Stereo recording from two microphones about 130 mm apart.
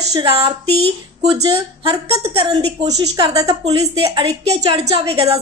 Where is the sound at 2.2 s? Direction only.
55° right (ahead or behind).